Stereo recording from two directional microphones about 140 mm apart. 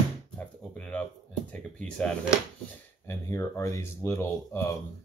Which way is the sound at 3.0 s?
20° left (ahead or behind).